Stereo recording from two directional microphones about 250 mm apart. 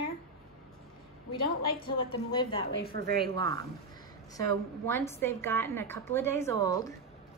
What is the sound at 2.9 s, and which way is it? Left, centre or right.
Speech, right.